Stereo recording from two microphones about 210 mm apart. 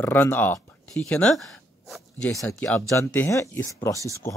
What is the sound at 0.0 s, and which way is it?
Speech, 10° left (ahead or behind).